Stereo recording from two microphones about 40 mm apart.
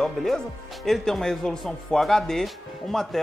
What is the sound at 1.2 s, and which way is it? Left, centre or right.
Speech, centre.